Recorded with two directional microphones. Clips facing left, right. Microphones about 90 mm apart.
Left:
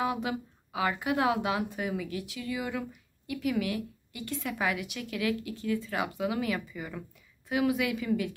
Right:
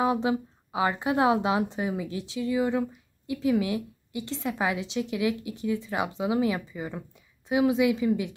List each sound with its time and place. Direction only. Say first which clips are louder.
0.0 s a woman's voice: right 6 dB; 25° right (ahead or behind)